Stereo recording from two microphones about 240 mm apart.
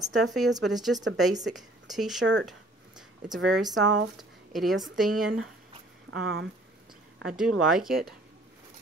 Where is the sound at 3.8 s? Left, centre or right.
Right.